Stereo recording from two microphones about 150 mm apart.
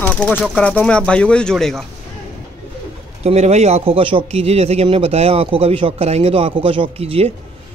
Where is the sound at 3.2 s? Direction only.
45° right (ahead or behind).